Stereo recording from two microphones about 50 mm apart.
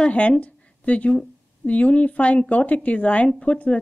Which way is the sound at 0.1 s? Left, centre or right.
Left.